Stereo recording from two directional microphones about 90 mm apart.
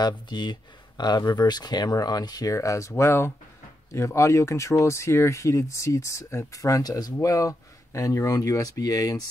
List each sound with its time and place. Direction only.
0.0 s speech: 55° left (ahead or behind)